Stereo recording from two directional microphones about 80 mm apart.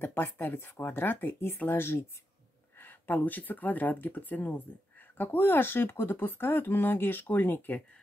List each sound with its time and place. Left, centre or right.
0.0 s speech: left